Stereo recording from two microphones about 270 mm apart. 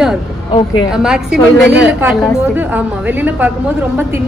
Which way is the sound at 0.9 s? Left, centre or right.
Centre.